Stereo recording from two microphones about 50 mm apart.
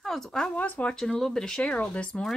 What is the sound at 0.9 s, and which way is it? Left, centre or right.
Speech, centre.